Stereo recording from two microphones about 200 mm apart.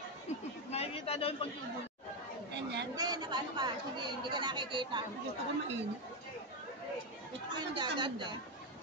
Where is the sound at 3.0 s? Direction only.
20° right (ahead or behind).